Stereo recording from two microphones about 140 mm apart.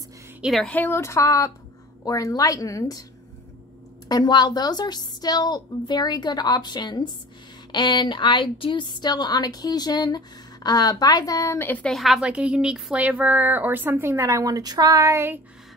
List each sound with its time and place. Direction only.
0.4 s speech: centre (ahead or behind)
0.7 s a woman's voice: 15° left (ahead or behind)
4.1 s a woman's voice: 30° left (ahead or behind); by 15.4 s 15° right (ahead or behind)